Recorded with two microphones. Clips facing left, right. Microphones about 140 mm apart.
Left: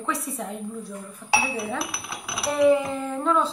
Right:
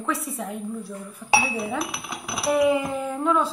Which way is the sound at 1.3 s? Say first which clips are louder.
Right 2 dB; 15° right (ahead or behind).